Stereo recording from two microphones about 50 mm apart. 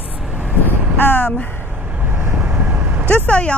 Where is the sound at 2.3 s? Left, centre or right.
Right.